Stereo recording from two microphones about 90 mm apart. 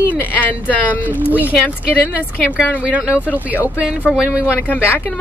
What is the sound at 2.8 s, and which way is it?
Speech, 15° right (ahead or behind).